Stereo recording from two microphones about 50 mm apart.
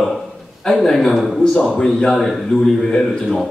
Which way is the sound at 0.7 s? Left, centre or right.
Centre.